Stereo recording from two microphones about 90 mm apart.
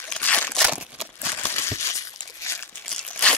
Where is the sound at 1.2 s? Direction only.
30° left (ahead or behind).